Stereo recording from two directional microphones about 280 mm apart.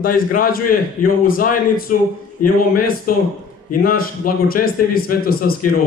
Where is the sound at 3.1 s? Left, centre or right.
Left.